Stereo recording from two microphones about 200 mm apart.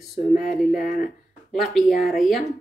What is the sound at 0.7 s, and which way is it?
Speech, 45° left (ahead or behind).